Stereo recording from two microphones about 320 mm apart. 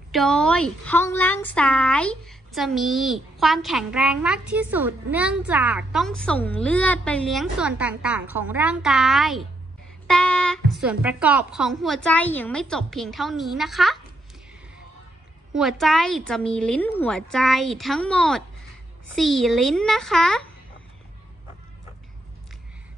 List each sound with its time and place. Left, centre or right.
0.1 s a woman's voice: centre
15.5 s a woman's voice: centre